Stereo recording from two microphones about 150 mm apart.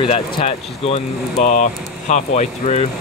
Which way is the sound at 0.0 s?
40° left (ahead or behind).